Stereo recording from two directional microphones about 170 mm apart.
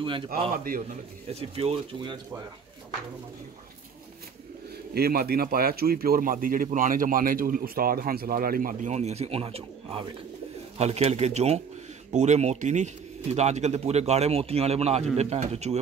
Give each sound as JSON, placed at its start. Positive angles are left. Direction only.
{"t": 1.3, "sound": "speech", "side_deg": -35}
{"t": 4.9, "sound": "speech", "side_deg": -65}